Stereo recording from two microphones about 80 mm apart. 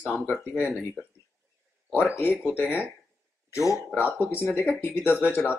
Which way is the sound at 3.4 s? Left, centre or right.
Left.